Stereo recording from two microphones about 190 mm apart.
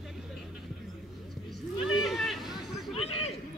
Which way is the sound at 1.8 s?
Centre (ahead or behind).